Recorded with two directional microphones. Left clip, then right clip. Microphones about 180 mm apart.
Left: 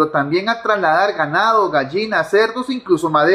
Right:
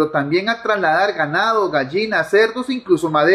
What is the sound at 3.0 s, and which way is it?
Speech, 15° right (ahead or behind).